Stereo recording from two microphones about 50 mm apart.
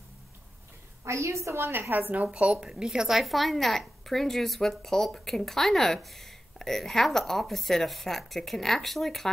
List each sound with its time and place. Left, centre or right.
1.0 s a woman's voice: right
2.2 s a woman's voice: centre